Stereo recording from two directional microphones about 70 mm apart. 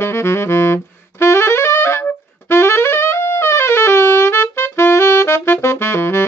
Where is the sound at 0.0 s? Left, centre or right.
Left.